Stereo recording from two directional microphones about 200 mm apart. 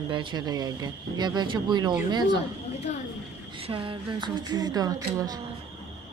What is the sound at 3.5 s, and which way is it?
Speech, 25° right (ahead or behind).